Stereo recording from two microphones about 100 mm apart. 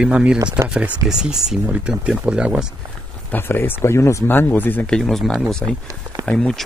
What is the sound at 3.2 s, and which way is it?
Speech, 20° left (ahead or behind).